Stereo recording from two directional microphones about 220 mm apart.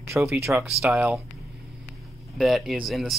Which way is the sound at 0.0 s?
10° right (ahead or behind).